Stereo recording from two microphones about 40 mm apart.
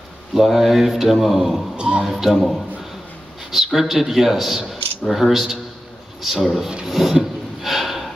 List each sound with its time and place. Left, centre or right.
0.3 s speech: centre
1.8 s speech: right
2.0 s speech: centre
3.5 s speech: centre
6.9 s a sound: centre